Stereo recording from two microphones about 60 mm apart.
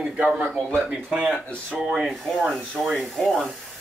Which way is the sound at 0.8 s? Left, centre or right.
Centre.